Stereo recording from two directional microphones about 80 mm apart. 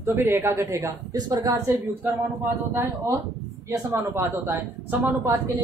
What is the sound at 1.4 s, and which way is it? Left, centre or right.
Speech, right.